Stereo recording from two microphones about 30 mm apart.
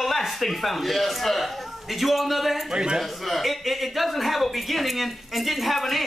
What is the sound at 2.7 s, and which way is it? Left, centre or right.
Speech, right.